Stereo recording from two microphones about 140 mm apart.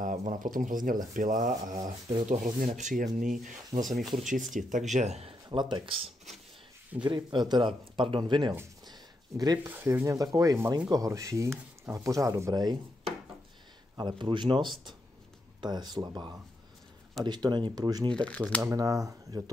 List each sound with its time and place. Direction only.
0.0 s speech: 65° right (ahead or behind)
3.8 s speech: centre (ahead or behind)
4.3 s speech: 65° right (ahead or behind); by 9.7 s 25° right (ahead or behind)
9.7 s speech: 15° right (ahead or behind)
13.9 s speech: 35° right (ahead or behind)
18.1 s speech: 5° left (ahead or behind)
18.6 s speech: 25° right (ahead or behind)